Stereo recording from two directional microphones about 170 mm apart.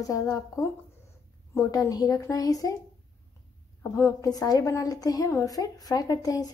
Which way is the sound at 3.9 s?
15° left (ahead or behind).